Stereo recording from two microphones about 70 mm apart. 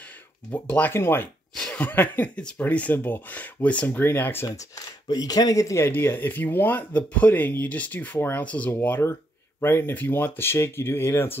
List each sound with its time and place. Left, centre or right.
0.5 s speech: left
1.5 s chuckle: centre
1.8 s speech: left
4.0 s speech: left
5.0 s speech: left
5.9 s speech: left